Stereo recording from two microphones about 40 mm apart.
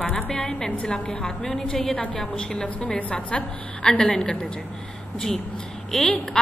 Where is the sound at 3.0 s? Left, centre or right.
Left; by 4.4 s centre.